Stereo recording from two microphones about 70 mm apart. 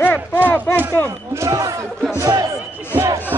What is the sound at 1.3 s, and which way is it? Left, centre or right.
Speech, right.